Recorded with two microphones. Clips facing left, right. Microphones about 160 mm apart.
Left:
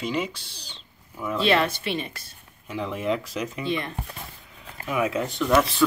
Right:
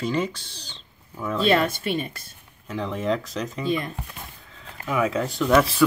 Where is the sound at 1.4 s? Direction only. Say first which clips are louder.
Right 2 dB; 50° right (ahead or behind).